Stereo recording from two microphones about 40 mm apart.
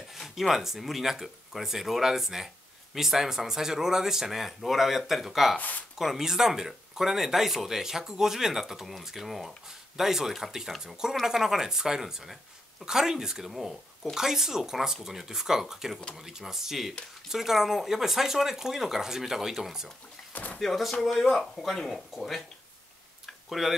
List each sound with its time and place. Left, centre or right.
0.4 s speech: centre
5.6 s speech: left
5.9 s speech: centre
13.5 s speech: centre
20.5 s speech: centre
23.2 s tick-tock: centre